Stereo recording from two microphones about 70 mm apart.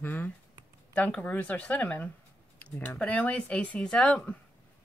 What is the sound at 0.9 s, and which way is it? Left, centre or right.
A woman's voice, centre.